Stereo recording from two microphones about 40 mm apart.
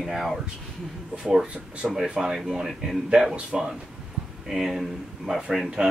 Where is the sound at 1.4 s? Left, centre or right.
Right.